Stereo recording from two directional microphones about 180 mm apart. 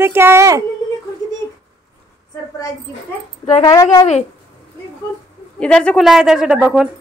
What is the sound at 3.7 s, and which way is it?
Speech, 20° left (ahead or behind).